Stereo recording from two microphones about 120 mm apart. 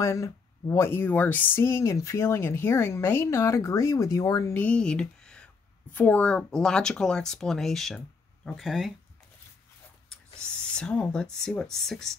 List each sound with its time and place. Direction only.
0.0 s speech: 25° left (ahead or behind)
4.6 s speech: 10° left (ahead or behind)
10.0 s speech: 5° left (ahead or behind)